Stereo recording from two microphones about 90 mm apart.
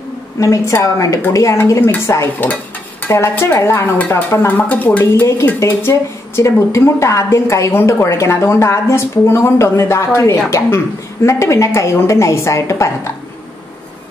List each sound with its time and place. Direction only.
0.4 s a woman's voice: 40° left (ahead or behind)
4.5 s a woman's voice: 20° left (ahead or behind)